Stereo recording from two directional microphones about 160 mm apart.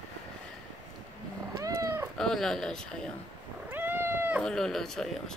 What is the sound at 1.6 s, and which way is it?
Cat, 20° right (ahead or behind).